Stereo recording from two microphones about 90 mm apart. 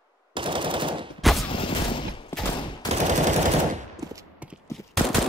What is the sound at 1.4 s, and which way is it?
Fusillade, 85° left.